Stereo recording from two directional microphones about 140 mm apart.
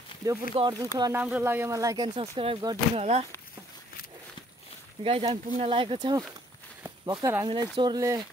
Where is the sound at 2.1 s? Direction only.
40° right (ahead or behind).